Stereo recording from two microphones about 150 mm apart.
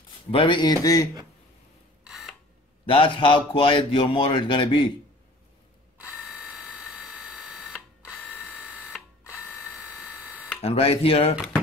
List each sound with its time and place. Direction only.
0.3 s speech: 35° left (ahead or behind)
2.0 s camera: centre (ahead or behind)
2.9 s a man's voice: 35° left (ahead or behind)
6.3 s a sound: centre (ahead or behind)
8.2 s drill: 10° left (ahead or behind)
8.5 s printer: 5° right (ahead or behind)
9.2 s mechanisms: 15° left (ahead or behind)
10.1 s a sound: 10° right (ahead or behind)
10.6 s a man's voice: 40° left (ahead or behind)